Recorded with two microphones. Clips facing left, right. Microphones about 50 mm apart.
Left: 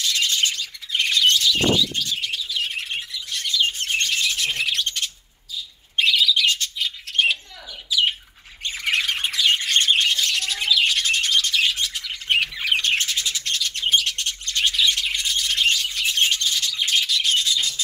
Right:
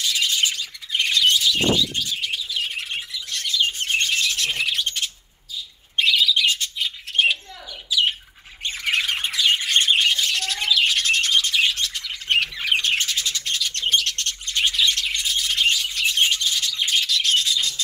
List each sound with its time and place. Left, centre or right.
0.0 s bird: centre
3.7 s bird: centre
4.2 s bird: centre
8.6 s squawk: centre
9.5 s squawk: centre
10.3 s bird: centre
13.7 s bird: centre
14.4 s bird: centre
14.7 s bird: centre
16.2 s rub: centre